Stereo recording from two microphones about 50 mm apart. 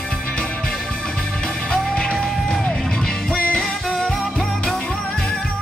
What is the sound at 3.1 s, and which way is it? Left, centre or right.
Music, left.